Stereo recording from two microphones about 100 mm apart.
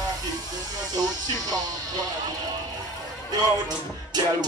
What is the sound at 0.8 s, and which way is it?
Music, 40° right (ahead or behind).